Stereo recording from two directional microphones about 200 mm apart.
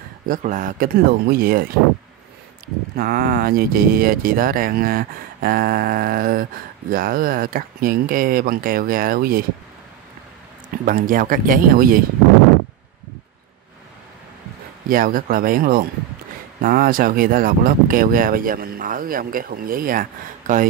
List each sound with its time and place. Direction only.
0.3 s speech: 40° right (ahead or behind)
3.0 s speech: 50° right (ahead or behind)
10.9 s speech: 45° right (ahead or behind)
14.9 s speech: 45° right (ahead or behind)